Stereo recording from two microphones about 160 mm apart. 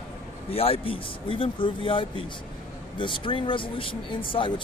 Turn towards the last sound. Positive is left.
turn(degrees=35)  # may be behind; listen again after turning